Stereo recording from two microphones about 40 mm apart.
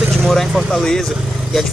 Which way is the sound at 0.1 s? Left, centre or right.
Centre.